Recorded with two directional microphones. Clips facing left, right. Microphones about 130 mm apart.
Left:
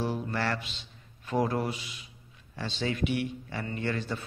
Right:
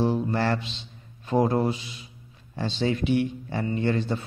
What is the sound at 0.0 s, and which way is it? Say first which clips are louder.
A man's voice: right 7 dB; 25° right (ahead or behind).